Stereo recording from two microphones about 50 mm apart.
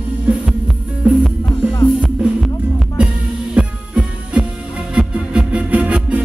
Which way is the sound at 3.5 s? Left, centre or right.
Centre.